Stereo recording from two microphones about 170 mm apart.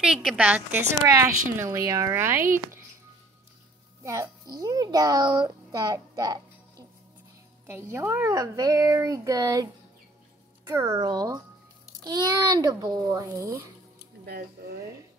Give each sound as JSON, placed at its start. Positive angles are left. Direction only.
{"t": 0.0, "sound": "a woman's voice", "side_deg": -5}
{"t": 4.0, "sound": "a child's voice", "side_deg": -20}
{"t": 7.6, "sound": "speech", "side_deg": -15}
{"t": 10.7, "sound": "speech", "side_deg": -20}
{"t": 14.2, "sound": "speech", "side_deg": -65}